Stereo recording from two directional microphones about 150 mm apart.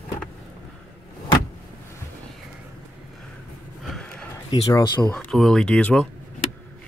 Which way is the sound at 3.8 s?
5° left (ahead or behind).